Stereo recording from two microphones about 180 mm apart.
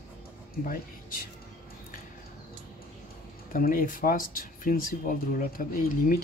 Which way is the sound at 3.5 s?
50° left (ahead or behind).